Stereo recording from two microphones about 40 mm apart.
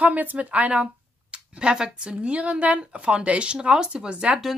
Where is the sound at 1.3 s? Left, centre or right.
Right.